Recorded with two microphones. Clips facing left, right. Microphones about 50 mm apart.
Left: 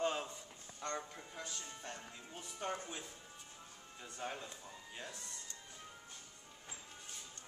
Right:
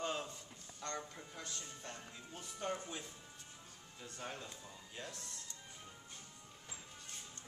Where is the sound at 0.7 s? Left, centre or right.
Centre.